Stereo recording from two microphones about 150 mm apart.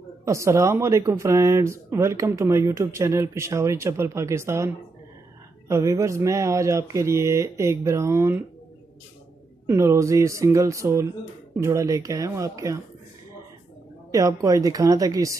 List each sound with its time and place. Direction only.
0.2 s speech: 20° right (ahead or behind)
9.7 s speech: 20° right (ahead or behind)
14.1 s speech: 20° right (ahead or behind)